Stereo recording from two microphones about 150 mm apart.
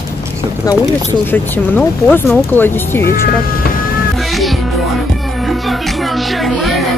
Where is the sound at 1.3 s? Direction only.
15° left (ahead or behind).